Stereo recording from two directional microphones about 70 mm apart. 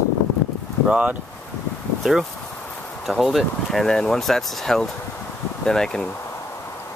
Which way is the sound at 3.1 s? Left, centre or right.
Centre.